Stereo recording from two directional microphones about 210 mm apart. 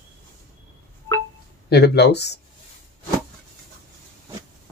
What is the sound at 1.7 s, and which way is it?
Speech, 50° left (ahead or behind).